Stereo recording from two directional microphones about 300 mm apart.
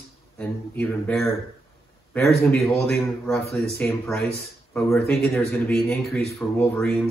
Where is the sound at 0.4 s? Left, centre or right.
Centre.